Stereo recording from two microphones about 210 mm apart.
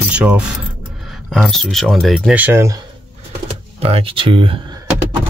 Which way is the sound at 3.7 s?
30° right (ahead or behind).